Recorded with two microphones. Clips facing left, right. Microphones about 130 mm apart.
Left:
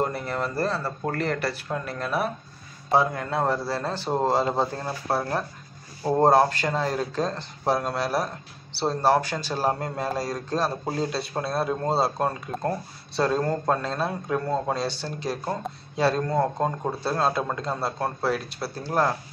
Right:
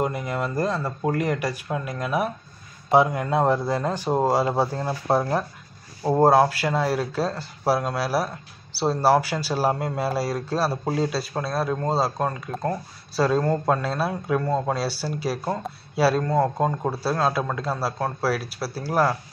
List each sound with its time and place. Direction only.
0.0 s a man's voice: 10° right (ahead or behind)
6.0 s speech: 5° right (ahead or behind)